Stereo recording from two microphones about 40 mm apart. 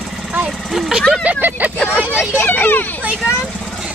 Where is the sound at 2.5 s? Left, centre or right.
Left.